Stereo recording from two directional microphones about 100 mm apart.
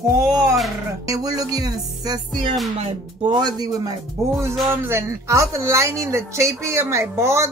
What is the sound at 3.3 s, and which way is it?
Speech, 45° right (ahead or behind).